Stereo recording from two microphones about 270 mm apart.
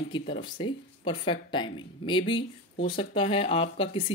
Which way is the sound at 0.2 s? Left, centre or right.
Left.